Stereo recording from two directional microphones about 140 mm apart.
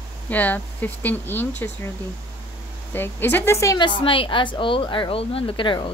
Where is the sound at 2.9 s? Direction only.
15° left (ahead or behind).